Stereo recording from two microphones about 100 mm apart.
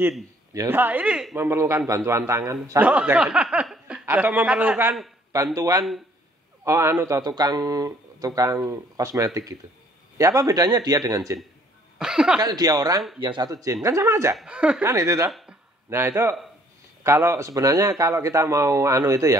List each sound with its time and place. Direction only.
0.6 s a man's voice: 20° right (ahead or behind)
1.3 s a man's voice: 25° right (ahead or behind)
2.8 s speech: 15° right (ahead or behind)
4.0 s a sound: 20° right (ahead or behind)
4.3 s speech: 10° right (ahead or behind)
5.3 s a man's voice: 35° right (ahead or behind)
7.2 s speech: 40° right (ahead or behind)
12.0 s speech: 5° right (ahead or behind)
12.4 s speech: 40° right (ahead or behind)
13.2 s speech: 55° right (ahead or behind)
13.5 s speech: 40° right (ahead or behind)
14.3 s speech: 10° right (ahead or behind)
14.9 s a man's voice: 30° right (ahead or behind)